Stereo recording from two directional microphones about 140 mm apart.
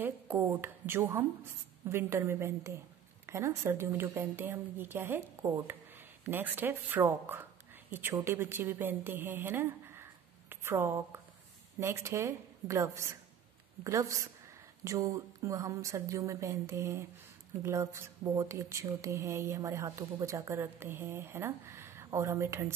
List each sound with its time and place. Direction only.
0.0 s a woman's voice: 15° right (ahead or behind)